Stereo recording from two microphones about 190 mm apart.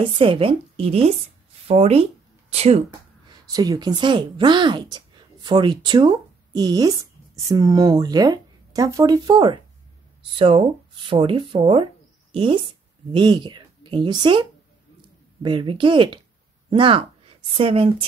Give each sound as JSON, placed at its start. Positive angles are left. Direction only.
{"t": 0.0, "sound": "speech", "side_deg": -25}
{"t": 3.3, "sound": "a woman's voice", "side_deg": -20}